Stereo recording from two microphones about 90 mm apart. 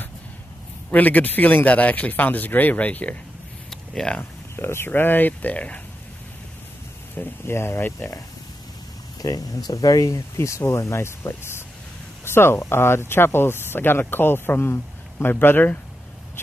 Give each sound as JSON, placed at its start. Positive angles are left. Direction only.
{"t": 0.9, "sound": "speech", "side_deg": 20}
{"t": 3.7, "sound": "a sound", "side_deg": 5}
{"t": 4.2, "sound": "speech", "side_deg": 25}
{"t": 7.2, "sound": "speech", "side_deg": 25}
{"t": 9.2, "sound": "speech", "side_deg": 45}